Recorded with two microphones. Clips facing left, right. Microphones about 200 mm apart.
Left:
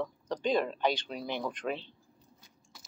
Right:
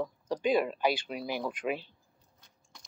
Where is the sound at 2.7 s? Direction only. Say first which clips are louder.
Even; 5° left (ahead or behind).